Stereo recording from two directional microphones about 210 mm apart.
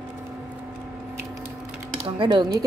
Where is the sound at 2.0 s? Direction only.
20° right (ahead or behind).